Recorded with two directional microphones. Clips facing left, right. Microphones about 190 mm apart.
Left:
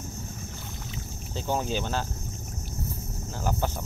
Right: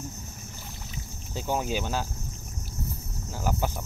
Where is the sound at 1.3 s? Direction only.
10° right (ahead or behind).